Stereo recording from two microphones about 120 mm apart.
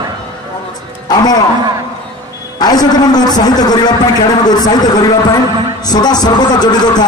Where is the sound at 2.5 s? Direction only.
35° left (ahead or behind).